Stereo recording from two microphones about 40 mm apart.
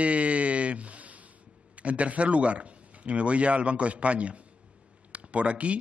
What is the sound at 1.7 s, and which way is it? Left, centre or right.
Speech, right.